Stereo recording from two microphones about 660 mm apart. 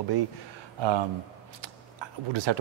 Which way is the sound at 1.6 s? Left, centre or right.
Right.